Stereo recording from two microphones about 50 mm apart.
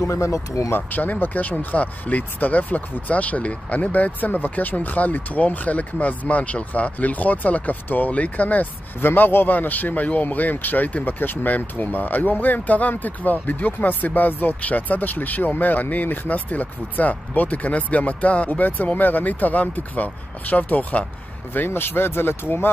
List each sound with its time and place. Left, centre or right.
0.0 s speech: left
0.7 s speech: left
9.0 s speech: left
21.6 s speech: left